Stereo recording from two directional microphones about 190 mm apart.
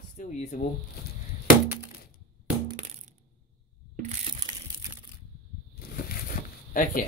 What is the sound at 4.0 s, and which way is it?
Crushing, 35° right (ahead or behind).